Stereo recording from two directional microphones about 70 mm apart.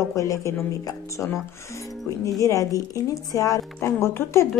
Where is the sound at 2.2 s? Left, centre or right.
Left.